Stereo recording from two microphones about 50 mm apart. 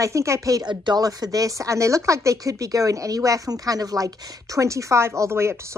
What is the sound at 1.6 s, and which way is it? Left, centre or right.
Speech, right.